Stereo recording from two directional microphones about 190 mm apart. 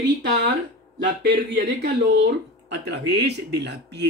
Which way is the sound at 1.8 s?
60° right (ahead or behind).